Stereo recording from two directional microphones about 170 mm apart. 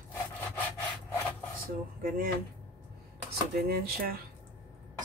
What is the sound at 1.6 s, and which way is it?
Speech, 55° right (ahead or behind).